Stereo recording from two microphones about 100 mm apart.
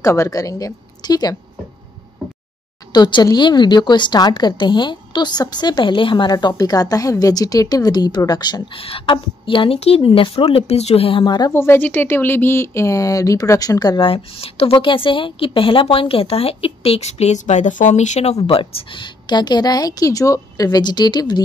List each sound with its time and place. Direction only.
0.0 s a woman's voice: 30° left (ahead or behind)
2.9 s a woman's voice: 50° left (ahead or behind)
8.7 s a woman's voice: 65° left (ahead or behind)
11.2 s a woman's voice: 45° left (ahead or behind)
11.5 s speech: 25° left (ahead or behind); by 13.9 s 40° left (ahead or behind)
13.9 s a woman's voice: 65° left (ahead or behind); by 21.4 s 45° left (ahead or behind)